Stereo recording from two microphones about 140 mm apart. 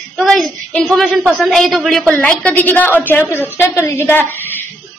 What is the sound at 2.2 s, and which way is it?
A woman's voice, 5° left (ahead or behind).